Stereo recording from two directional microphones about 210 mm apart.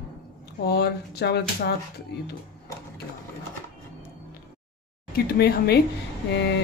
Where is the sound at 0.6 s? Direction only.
50° left (ahead or behind).